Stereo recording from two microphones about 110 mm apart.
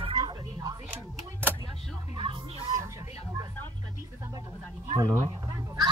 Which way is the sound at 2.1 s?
50° right (ahead or behind).